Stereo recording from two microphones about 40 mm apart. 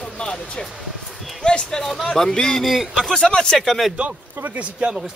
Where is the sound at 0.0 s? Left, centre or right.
Left.